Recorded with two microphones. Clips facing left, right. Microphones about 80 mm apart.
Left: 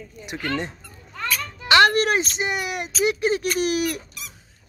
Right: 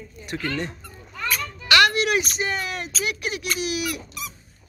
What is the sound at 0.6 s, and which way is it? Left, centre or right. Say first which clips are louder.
Children playing: right 1 dB; left.